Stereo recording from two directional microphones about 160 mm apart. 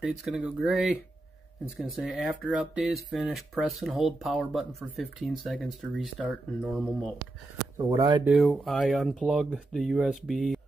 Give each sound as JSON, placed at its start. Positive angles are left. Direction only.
{"t": 0.0, "sound": "speech", "side_deg": 0}
{"t": 7.7, "sound": "speech", "side_deg": -25}
{"t": 8.3, "sound": "speech", "side_deg": 0}